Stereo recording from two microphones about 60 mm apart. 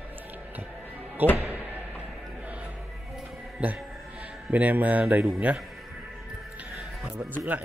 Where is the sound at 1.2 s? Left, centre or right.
Right.